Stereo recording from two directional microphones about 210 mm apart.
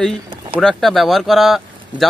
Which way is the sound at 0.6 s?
Centre (ahead or behind).